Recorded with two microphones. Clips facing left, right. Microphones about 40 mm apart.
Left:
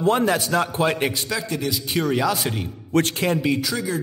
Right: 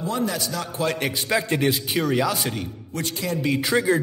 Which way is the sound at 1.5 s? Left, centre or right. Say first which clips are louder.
Right 4 dB; right.